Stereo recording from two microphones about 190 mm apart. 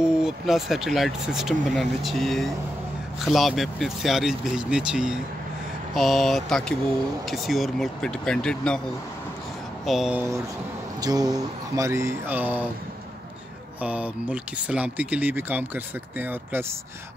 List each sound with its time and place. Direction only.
0.0 s speech: 5° right (ahead or behind)
9.8 s speech: 5° right (ahead or behind)
11.0 s speech: 20° right (ahead or behind)
13.7 s speech: 5° right (ahead or behind)